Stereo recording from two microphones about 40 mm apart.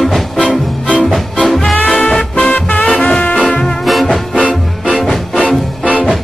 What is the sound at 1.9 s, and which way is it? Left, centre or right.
Swing music, centre.